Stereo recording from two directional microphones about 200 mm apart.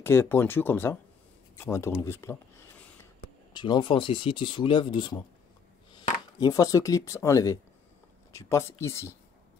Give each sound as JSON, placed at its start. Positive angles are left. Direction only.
{"t": 0.0, "sound": "speech", "side_deg": 10}
{"t": 3.5, "sound": "speech", "side_deg": 20}
{"t": 6.4, "sound": "speech", "side_deg": 15}